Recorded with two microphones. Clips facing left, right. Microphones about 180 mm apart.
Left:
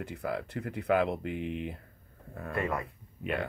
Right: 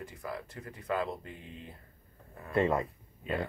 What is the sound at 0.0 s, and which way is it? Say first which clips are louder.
Speech: left 6 dB; 65° left (ahead or behind).